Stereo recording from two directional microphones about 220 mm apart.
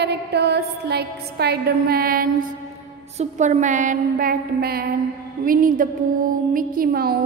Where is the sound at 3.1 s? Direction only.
30° right (ahead or behind).